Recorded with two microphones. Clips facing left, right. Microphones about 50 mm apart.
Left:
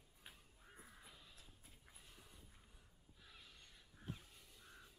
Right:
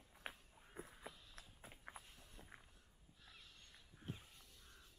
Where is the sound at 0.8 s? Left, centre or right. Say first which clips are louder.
Right 9 dB; right.